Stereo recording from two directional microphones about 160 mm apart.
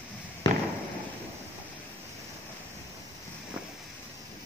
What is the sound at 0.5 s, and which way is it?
Fireworks, 25° left (ahead or behind).